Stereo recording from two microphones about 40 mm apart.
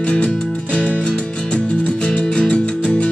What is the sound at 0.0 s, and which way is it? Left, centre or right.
Music, left.